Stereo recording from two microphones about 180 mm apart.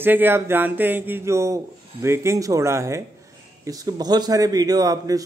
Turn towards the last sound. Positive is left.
turn(degrees=-20)  # may be behind; listen again after turning